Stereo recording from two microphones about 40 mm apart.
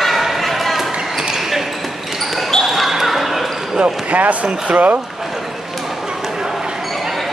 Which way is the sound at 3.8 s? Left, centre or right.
Right.